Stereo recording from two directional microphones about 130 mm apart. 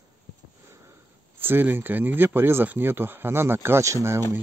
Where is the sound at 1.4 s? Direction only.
15° right (ahead or behind).